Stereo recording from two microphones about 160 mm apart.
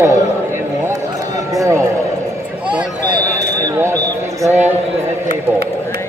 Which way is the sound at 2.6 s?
5° right (ahead or behind).